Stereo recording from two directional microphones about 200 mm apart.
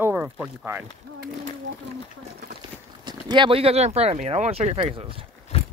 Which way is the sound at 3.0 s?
25° right (ahead or behind).